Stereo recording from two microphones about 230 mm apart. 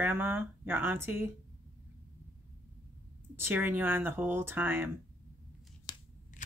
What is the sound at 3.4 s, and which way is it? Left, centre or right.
Speech, centre.